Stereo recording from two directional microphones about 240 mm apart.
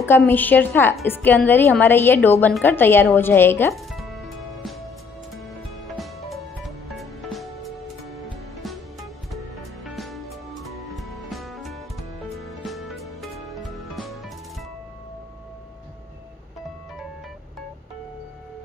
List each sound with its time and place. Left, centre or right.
0.3 s a woman's voice: centre
5.9 s music: centre
9.8 s music: centre